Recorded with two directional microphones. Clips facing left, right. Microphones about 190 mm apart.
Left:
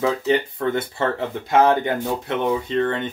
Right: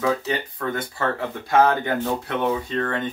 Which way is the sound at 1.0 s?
25° left (ahead or behind).